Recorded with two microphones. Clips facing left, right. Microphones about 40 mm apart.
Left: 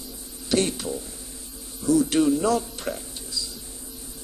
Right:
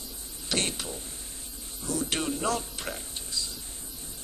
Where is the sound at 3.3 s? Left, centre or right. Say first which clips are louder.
Left 2 dB; right.